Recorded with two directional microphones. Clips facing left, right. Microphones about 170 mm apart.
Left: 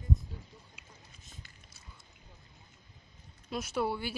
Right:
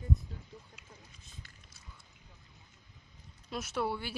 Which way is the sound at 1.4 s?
Centre (ahead or behind).